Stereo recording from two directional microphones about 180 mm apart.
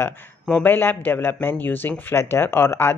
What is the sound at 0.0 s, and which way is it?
Speech, 10° left (ahead or behind).